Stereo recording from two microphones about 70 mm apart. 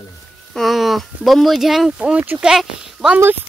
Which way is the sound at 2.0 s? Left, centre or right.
Centre.